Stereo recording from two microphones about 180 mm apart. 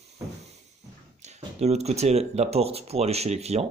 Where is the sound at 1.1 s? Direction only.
40° right (ahead or behind).